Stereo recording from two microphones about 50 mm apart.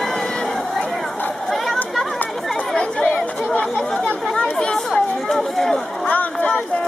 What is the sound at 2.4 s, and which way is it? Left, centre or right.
Chatter, centre.